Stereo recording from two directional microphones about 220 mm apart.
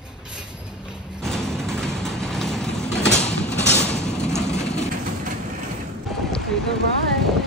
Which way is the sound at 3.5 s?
30° left (ahead or behind).